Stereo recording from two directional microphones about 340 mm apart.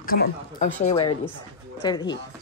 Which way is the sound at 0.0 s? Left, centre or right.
Left.